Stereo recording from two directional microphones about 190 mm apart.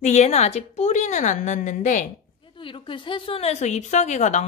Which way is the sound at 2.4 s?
25° left (ahead or behind).